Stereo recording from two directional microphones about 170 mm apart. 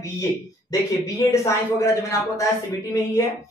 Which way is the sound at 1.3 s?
15° left (ahead or behind).